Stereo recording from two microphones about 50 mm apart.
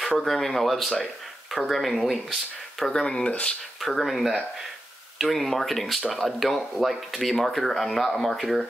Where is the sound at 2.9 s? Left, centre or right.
Centre.